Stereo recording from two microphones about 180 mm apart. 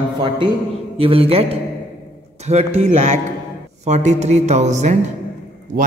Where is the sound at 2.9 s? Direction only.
40° right (ahead or behind).